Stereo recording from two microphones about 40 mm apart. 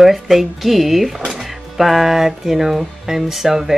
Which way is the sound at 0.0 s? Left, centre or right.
Centre.